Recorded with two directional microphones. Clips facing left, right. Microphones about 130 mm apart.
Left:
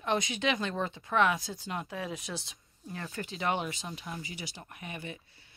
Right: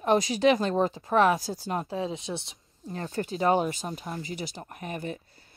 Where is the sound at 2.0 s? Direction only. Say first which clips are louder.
Right 6 dB; 25° right (ahead or behind).